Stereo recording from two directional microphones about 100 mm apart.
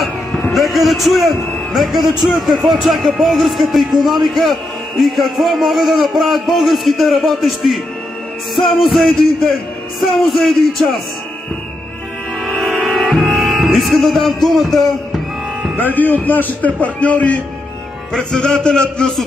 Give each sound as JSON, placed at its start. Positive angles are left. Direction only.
{"t": 0.0, "sound": "a sound", "side_deg": 0}
{"t": 2.2, "sound": "speech", "side_deg": 0}
{"t": 12.4, "sound": "music", "side_deg": 0}
{"t": 15.7, "sound": "a man's voice", "side_deg": 20}